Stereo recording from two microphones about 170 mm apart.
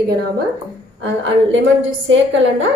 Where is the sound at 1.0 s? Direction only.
90° right.